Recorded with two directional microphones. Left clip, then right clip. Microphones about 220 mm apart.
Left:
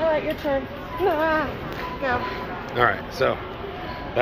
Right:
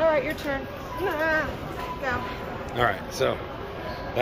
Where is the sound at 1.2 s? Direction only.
30° left (ahead or behind).